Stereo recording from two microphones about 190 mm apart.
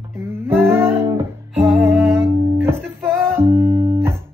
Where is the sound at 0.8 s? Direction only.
15° right (ahead or behind).